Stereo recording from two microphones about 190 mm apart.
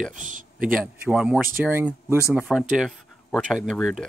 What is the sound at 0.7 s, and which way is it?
Speech, 5° right (ahead or behind).